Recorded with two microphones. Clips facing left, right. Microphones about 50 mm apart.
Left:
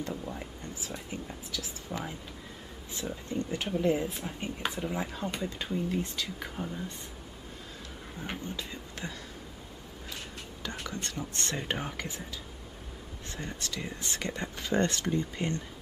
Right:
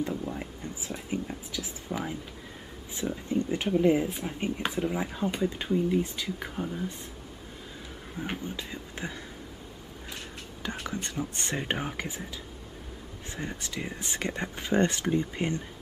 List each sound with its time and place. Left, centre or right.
0.1 s a sound: centre
0.4 s speech: centre
1.9 s speech: centre
3.3 s speech: centre
8.2 s speech: centre
10.8 s speech: centre
13.3 s speech: centre